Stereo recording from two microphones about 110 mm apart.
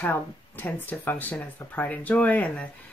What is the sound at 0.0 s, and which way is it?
Speech, 15° left (ahead or behind).